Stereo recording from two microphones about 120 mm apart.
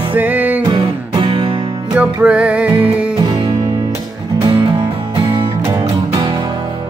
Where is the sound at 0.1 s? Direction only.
15° right (ahead or behind).